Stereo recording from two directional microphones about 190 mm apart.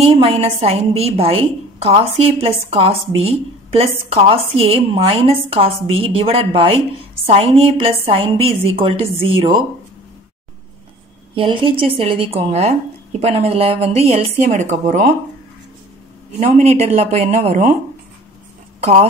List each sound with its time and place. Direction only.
0.0 s a woman's voice: 30° right (ahead or behind)
11.3 s a woman's voice: 30° right (ahead or behind)
16.3 s a woman's voice: 35° right (ahead or behind)